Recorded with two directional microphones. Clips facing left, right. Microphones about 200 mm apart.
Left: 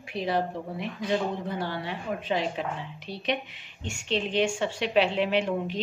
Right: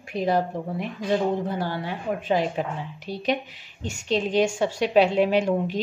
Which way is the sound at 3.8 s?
40° right (ahead or behind).